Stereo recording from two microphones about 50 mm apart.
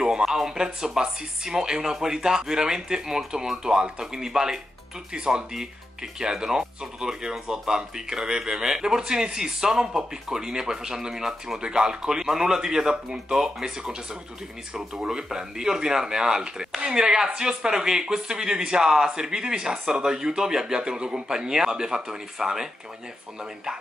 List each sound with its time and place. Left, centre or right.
0.0 s speech: centre
15.0 s speech: centre